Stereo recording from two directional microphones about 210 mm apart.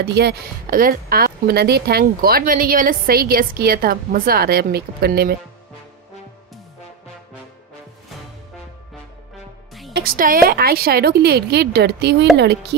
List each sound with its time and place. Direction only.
0.0 s speech: 50° right (ahead or behind)
9.9 s speech: 45° right (ahead or behind)